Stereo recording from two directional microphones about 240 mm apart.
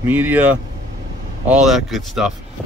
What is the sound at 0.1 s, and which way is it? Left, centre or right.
Speech, centre.